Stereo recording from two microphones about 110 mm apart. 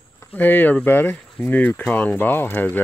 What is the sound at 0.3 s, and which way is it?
Speech, 15° left (ahead or behind).